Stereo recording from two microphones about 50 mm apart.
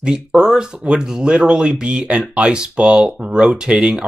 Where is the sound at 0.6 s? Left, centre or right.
Centre.